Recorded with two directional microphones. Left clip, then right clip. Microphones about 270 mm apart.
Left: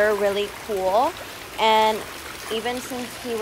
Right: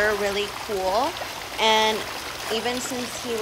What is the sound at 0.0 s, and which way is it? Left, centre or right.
Speech, centre.